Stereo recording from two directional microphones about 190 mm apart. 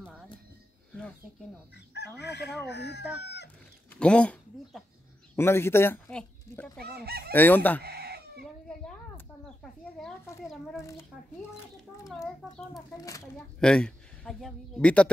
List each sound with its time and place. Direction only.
2.0 s speech: 65° left (ahead or behind)
3.9 s speech: 5° left (ahead or behind)
5.3 s a sound: 10° left (ahead or behind)
6.8 s fowl: 55° right (ahead or behind)
7.3 s fowl: 10° left (ahead or behind)
7.8 s chicken: 55° right (ahead or behind)
8.6 s a sound: 5° left (ahead or behind)
10.4 s speech: centre (ahead or behind)
10.8 s fowl: 15° left (ahead or behind)
12.9 s fowl: 15° left (ahead or behind)
13.6 s speech: 5° left (ahead or behind)